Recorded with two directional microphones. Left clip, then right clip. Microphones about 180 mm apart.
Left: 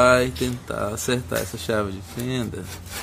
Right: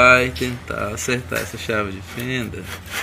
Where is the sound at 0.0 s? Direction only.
10° left (ahead or behind).